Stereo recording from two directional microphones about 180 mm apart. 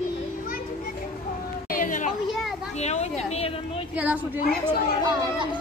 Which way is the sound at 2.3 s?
Centre (ahead or behind).